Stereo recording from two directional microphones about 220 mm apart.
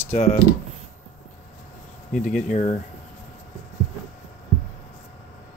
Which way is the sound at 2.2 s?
30° left (ahead or behind).